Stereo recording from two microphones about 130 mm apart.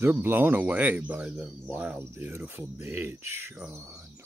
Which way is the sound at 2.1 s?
15° right (ahead or behind).